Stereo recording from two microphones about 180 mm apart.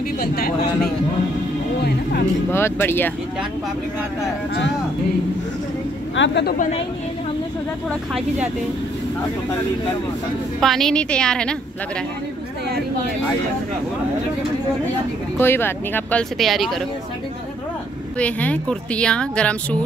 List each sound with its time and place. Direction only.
2.5 s speech: 15° left (ahead or behind)
6.1 s speech: 80° left
10.6 s a woman's voice: centre (ahead or behind)
15.3 s speech: 10° left (ahead or behind)
18.2 s speech: 5° left (ahead or behind)